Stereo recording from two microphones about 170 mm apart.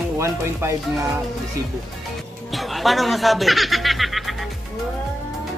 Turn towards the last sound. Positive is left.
turn(degrees=0)  # may be behind; listen again after turning